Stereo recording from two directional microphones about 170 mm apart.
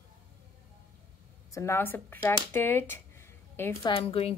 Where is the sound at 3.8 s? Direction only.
30° left (ahead or behind).